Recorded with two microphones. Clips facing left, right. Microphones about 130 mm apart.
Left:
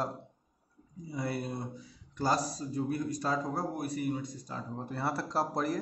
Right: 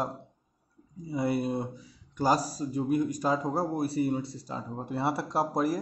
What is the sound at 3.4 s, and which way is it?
A man's voice, 30° right (ahead or behind).